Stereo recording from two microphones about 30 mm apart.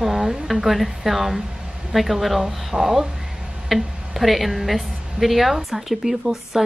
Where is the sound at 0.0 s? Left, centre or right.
Centre.